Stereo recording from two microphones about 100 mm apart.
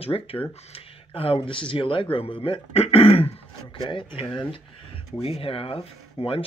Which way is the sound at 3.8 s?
55° left (ahead or behind).